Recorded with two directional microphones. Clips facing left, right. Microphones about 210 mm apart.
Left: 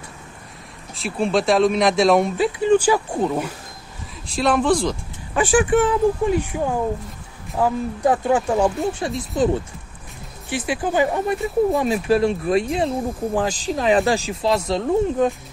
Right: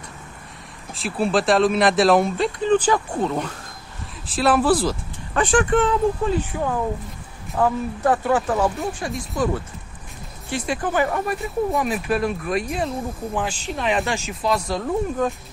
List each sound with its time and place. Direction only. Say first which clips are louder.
0.9 s speech: left 1 dB; centre (ahead or behind)
4.3 s speech: even; 5° right (ahead or behind)
5.3 s speech: left 2 dB; 5° left (ahead or behind)
8.5 s speech: left 3 dB; 25° left (ahead or behind)
10.7 s speech: left 2 dB; 15° left (ahead or behind)